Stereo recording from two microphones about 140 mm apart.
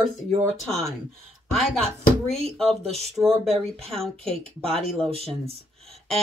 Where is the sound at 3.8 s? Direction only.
40° right (ahead or behind).